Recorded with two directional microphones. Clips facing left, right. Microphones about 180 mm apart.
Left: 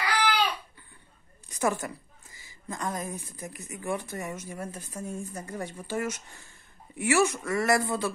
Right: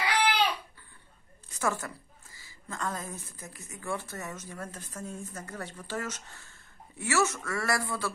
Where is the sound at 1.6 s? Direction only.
15° left (ahead or behind).